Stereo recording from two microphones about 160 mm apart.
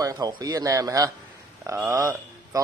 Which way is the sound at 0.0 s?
25° right (ahead or behind).